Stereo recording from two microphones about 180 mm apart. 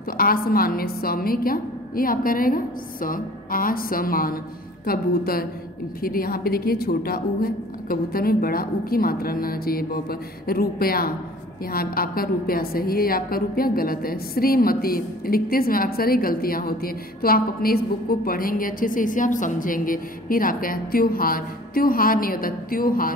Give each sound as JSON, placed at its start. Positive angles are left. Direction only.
{"t": 0.2, "sound": "a woman's voice", "side_deg": 55}